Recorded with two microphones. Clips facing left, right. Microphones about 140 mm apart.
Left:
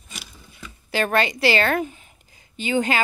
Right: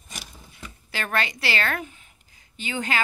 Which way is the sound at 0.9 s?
25° left (ahead or behind).